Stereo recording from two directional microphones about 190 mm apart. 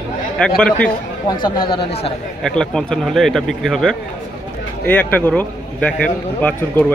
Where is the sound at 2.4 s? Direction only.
5° left (ahead or behind).